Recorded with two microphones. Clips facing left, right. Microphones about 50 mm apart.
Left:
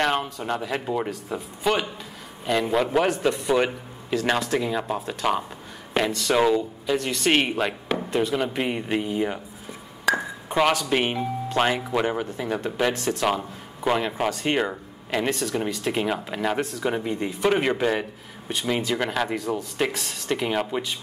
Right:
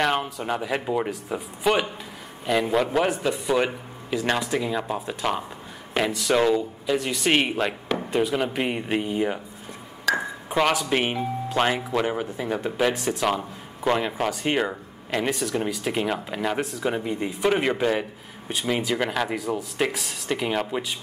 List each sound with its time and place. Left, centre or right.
0.0 s speech: centre
8.1 s speech: centre
10.1 s ping: centre
10.9 s speech: centre
12.9 s speech: right
13.2 s speech: centre